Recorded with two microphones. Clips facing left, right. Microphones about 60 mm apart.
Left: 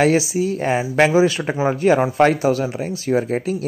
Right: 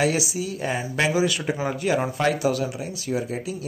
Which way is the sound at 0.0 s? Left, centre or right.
Left.